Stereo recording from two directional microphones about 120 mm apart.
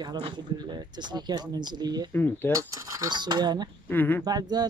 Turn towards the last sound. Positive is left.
turn(degrees=-35)  # may be behind; listen again after turning